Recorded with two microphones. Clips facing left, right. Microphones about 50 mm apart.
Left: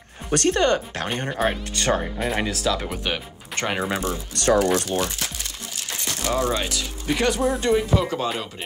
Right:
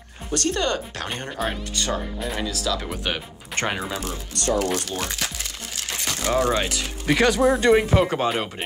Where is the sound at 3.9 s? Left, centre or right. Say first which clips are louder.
Left 4 dB; left.